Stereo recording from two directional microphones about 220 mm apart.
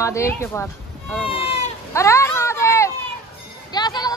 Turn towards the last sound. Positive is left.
turn(degrees=20)  # may be behind; listen again after turning